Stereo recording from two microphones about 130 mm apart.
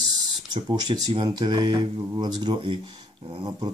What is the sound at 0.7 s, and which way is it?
Speech, 35° right (ahead or behind).